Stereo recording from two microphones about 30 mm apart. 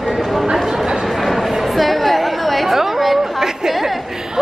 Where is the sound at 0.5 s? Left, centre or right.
Centre.